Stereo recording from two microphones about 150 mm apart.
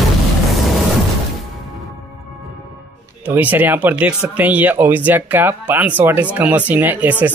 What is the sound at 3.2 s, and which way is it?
Speech, 10° right (ahead or behind).